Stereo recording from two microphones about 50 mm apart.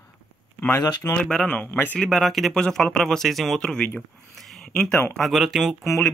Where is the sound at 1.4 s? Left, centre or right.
Left.